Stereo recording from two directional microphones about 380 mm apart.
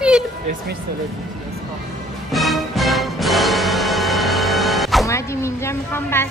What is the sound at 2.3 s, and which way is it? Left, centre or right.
Music, centre.